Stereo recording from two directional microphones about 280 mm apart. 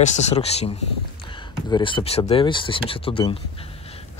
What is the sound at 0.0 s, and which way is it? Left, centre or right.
Speech, left.